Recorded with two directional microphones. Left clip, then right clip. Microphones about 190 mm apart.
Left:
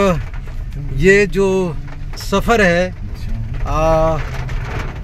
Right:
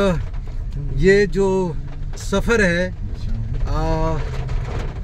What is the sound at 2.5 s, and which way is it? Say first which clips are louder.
Speech: left 5 dB; 5° right (ahead or behind).